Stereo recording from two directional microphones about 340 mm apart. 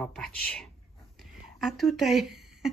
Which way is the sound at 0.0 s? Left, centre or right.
Centre.